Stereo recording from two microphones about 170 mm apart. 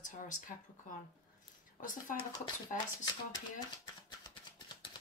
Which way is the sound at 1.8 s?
50° left (ahead or behind).